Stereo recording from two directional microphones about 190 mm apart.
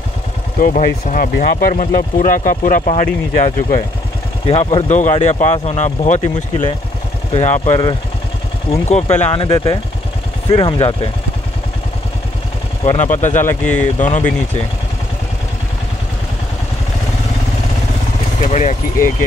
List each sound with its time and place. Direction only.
0.6 s speech: 45° left (ahead or behind)
4.5 s speech: 30° left (ahead or behind)
7.3 s speech: 35° left (ahead or behind)
12.8 s speech: 35° left (ahead or behind)
13.4 s speech: 10° left (ahead or behind)
13.9 s speech: 40° left (ahead or behind)
18.4 s vehicle: 40° left (ahead or behind)